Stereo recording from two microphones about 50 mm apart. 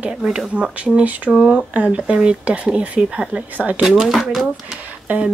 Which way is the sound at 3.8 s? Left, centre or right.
Centre.